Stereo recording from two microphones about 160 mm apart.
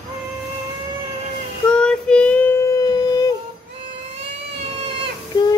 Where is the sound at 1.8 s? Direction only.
5° left (ahead or behind); by 3.3 s 25° left (ahead or behind).